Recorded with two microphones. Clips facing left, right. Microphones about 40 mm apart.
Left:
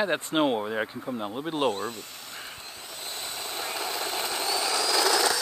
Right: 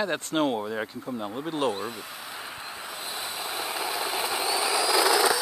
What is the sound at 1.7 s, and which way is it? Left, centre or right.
Speech, centre.